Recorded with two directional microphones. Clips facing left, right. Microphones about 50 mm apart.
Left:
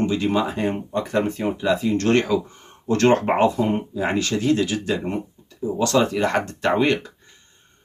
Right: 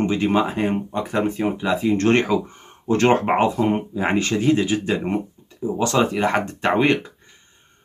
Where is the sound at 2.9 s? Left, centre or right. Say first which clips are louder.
Even; centre.